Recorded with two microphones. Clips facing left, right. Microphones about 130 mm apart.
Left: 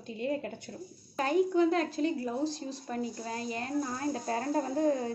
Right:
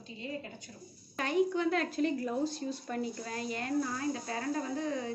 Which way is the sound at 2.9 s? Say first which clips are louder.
Left 5 dB; 30° left (ahead or behind).